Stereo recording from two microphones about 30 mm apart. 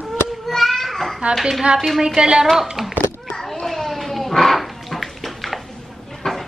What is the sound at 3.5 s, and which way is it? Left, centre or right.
Bathtub, centre.